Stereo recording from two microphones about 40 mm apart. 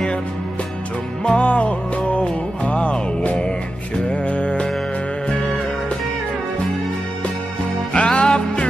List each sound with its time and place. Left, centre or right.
1.2 s music: left
7.9 s music: left